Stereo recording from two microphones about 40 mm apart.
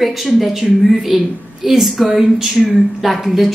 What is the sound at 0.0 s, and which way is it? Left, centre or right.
A woman's voice, centre.